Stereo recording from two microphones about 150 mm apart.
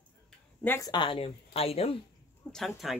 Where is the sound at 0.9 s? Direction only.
35° left (ahead or behind).